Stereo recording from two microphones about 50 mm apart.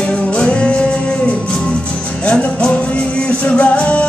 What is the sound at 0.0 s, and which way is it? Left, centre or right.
Music, left.